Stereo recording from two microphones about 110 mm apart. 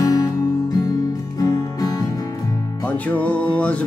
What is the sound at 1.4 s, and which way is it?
Music, 35° left (ahead or behind).